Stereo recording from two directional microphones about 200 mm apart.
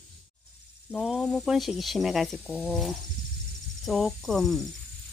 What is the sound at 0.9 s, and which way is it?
Speech, 5° right (ahead or behind).